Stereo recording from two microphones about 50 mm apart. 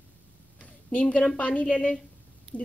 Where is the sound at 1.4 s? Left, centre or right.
Left.